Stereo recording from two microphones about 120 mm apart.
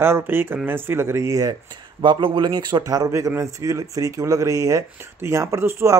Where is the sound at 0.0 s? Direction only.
20° right (ahead or behind).